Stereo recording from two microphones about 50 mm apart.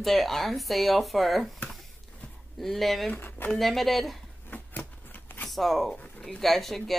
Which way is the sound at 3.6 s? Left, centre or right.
Centre.